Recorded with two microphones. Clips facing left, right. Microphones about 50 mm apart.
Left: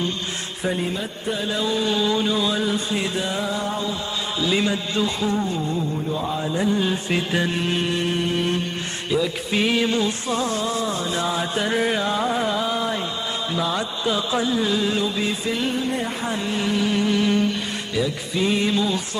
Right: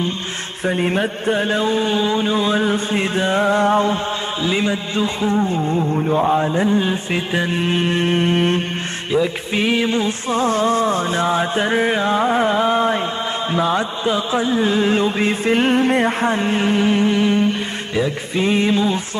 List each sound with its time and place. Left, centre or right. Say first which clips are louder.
0.7 s mantra: right 7 dB; right
4.4 s a man's voice: right 1 dB; right
6.0 s mantra: right 9 dB; right
9.1 s a man's voice: right 4 dB; right
10.0 s mantra: right 5 dB; right